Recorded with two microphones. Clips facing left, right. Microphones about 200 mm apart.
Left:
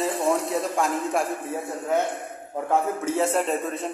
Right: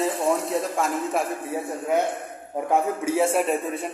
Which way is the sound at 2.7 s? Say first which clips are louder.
Right 1 dB; 10° right (ahead or behind).